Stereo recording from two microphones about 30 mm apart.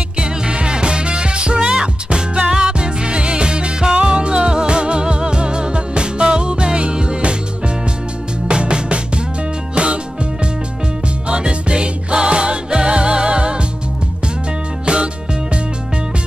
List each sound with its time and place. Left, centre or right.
0.2 s music: right
11.2 s music: right
14.9 s music: right